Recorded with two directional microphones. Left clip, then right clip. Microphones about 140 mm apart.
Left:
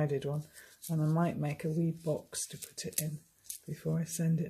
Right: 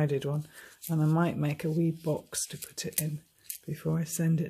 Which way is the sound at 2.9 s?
20° right (ahead or behind).